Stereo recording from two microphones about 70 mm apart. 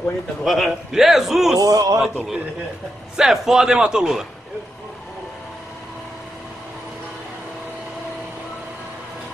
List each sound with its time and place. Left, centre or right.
0.4 s a man's voice: centre
1.6 s speech: right
2.0 s a man's voice: centre